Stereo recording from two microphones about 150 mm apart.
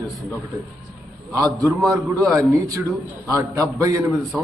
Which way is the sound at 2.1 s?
20° right (ahead or behind).